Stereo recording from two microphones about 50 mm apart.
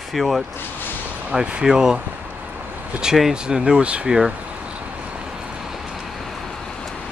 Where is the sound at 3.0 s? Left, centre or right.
Centre.